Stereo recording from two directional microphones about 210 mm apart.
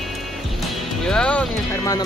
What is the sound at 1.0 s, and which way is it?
Speech, 5° left (ahead or behind).